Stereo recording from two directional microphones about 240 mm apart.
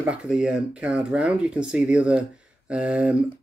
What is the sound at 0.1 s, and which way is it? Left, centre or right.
Speech, centre.